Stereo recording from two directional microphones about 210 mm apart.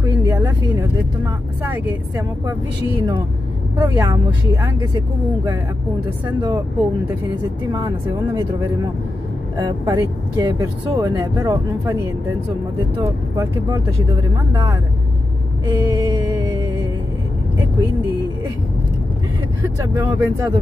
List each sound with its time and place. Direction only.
0.0 s a sound: 15° right (ahead or behind)
0.7 s speech: 10° right (ahead or behind)
3.0 s speech: 20° right (ahead or behind)
7.6 s speech: 15° right (ahead or behind)
15.6 s music: 15° right (ahead or behind)
19.8 s speech: 15° right (ahead or behind)